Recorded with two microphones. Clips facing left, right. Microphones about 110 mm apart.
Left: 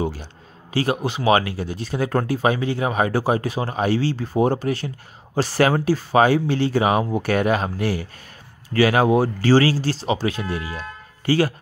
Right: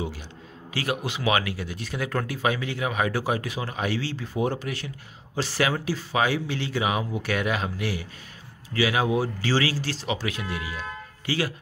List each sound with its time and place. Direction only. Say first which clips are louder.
0.0 s a man's voice: left 7 dB; 40° left (ahead or behind)